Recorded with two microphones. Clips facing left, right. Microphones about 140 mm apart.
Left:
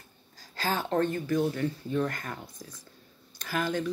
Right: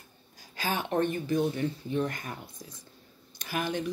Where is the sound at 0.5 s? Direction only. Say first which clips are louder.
Left 1 dB; 15° right (ahead or behind).